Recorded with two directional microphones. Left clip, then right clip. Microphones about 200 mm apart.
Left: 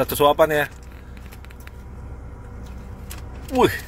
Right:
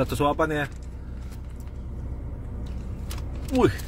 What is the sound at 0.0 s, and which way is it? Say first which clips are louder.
Speech: left 7 dB; 15° left (ahead or behind).